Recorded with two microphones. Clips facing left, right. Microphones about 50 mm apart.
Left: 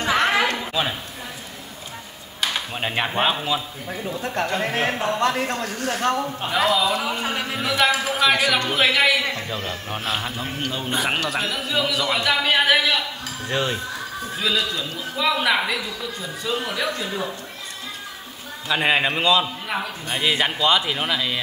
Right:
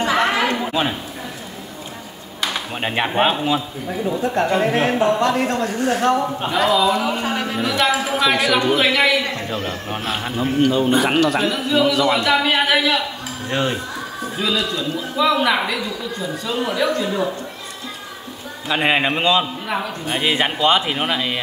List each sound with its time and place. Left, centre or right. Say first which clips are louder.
0.0 s chatter: right 2 dB; centre
2.7 s a man's voice: right 3 dB; centre
5.7 s a man's voice: right 5 dB; right
6.5 s a man's voice: right 3 dB; centre
13.5 s a man's voice: right 3 dB; centre
14.3 s a man's voice: right 2 dB; centre
18.7 s a man's voice: right 2 dB; centre
19.7 s a man's voice: right 3 dB; centre
20.2 s speech: right 2 dB; centre